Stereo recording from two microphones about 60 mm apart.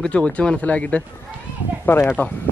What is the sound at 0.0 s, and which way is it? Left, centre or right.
Speech, centre.